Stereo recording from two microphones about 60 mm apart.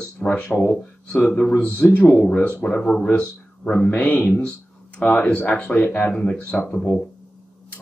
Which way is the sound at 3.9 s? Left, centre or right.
Left.